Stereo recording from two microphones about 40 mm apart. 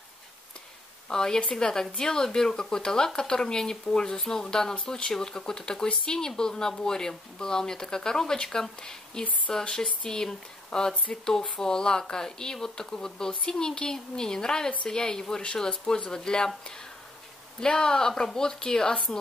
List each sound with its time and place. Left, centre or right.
1.0 s speech: centre
4.7 s speech: left